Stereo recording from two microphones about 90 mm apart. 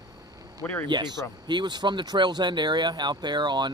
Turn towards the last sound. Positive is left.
turn(degrees=-55)  # may be behind; listen again after turning